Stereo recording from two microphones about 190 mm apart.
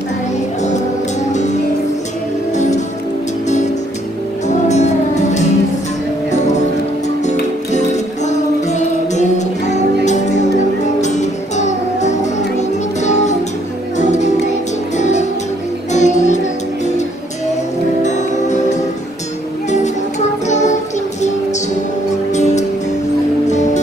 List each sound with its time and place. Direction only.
1.3 s music: 40° left (ahead or behind)
4.6 s music: 35° left (ahead or behind)
7.2 s music: 40° left (ahead or behind)
18.0 s music: 40° left (ahead or behind)
20.4 s music: 40° left (ahead or behind)
22.3 s music: 35° left (ahead or behind)